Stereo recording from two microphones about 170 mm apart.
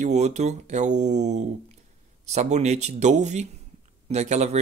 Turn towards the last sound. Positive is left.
turn(degrees=-40)  # may be behind; listen again after turning